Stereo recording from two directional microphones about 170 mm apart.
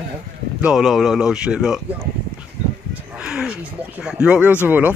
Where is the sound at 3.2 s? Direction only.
5° right (ahead or behind).